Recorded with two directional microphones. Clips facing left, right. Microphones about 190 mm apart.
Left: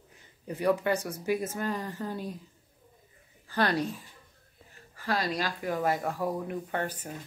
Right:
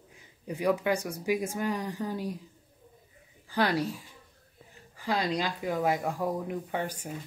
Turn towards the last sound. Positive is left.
turn(degrees=-10)  # may be behind; listen again after turning